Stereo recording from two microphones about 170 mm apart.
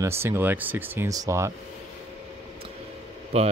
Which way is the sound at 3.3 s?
35° right (ahead or behind).